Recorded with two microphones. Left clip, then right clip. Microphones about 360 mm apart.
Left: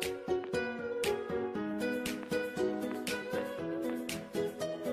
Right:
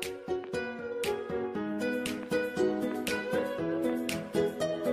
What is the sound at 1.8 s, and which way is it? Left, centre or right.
Music, right.